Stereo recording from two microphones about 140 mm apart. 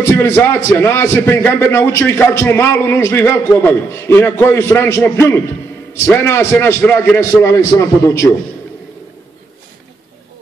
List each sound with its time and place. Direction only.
0.0 s a man's voice: 20° left (ahead or behind)